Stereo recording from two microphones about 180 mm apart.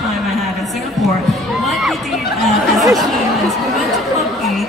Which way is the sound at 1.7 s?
Centre (ahead or behind).